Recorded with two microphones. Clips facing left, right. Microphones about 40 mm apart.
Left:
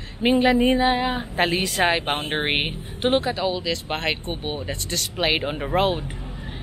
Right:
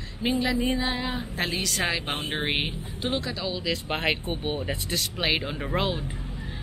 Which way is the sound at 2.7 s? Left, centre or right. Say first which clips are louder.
Left 8 dB; left.